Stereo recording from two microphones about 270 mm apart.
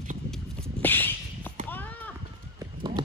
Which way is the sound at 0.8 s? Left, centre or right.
Centre.